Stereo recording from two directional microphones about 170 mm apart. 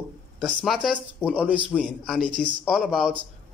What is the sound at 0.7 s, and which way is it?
Speech, 5° right (ahead or behind).